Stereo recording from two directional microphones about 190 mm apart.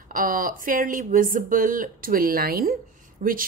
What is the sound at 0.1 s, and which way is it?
Speech, 45° right (ahead or behind).